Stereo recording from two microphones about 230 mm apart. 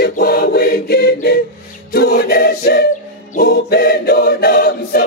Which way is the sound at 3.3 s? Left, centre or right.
Left.